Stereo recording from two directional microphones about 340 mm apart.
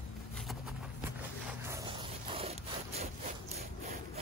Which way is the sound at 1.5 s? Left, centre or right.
Centre.